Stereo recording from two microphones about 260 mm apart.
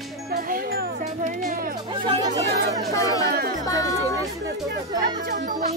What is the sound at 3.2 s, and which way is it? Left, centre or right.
Music, right.